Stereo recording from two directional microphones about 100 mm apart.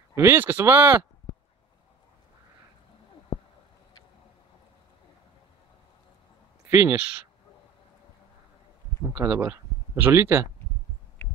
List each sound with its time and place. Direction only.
0.1 s speech: 25° right (ahead or behind)
6.7 s speech: 20° right (ahead or behind)
9.3 s speech: 20° right (ahead or behind)